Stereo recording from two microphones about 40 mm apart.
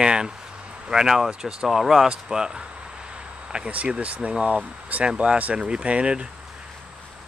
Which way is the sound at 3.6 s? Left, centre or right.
Right.